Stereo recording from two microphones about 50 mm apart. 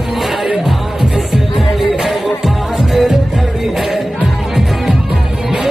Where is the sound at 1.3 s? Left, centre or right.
Centre.